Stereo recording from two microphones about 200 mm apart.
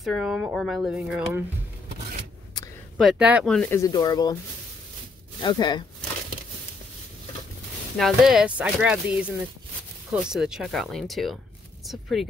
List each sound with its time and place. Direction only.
0.0 s speech: centre (ahead or behind)
3.0 s speech: 5° right (ahead or behind)
3.7 s speech: 20° left (ahead or behind)
5.4 s speech: 20° left (ahead or behind)
8.0 s speech: centre (ahead or behind)